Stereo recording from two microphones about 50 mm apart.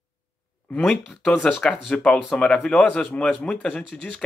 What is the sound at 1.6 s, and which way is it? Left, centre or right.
Speech, left.